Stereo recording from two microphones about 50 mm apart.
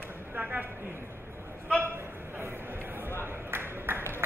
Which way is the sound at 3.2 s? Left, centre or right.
Right.